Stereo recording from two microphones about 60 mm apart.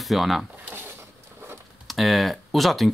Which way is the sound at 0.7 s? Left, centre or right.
Right.